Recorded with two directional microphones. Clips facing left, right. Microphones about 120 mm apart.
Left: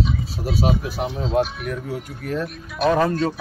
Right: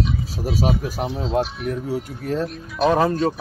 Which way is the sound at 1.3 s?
30° right (ahead or behind).